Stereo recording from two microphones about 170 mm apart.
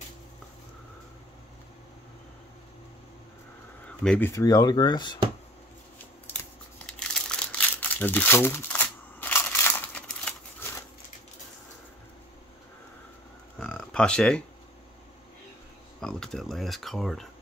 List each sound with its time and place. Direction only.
4.0 s speech: 5° left (ahead or behind)
4.3 s speech: 20° left (ahead or behind)
7.0 s crumpling: 5° left (ahead or behind)
13.6 s a sound: 5° left (ahead or behind)
16.0 s speech: 5° left (ahead or behind)